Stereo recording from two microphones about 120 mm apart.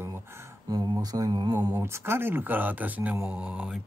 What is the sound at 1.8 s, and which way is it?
Speech, 20° right (ahead or behind).